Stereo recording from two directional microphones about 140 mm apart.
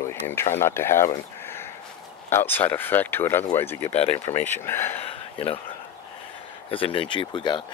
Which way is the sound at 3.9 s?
45° left (ahead or behind).